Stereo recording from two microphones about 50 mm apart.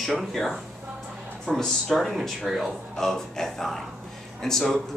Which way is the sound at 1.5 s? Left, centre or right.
Left.